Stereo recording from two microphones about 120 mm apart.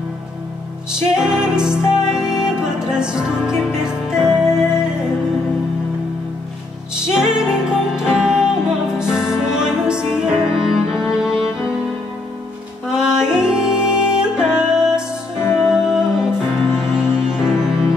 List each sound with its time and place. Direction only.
1.1 s music: 5° right (ahead or behind)
7.0 s music: 5° right (ahead or behind)
12.9 s music: 5° right (ahead or behind)
15.4 s music: 20° left (ahead or behind)
15.7 s music: 5° right (ahead or behind)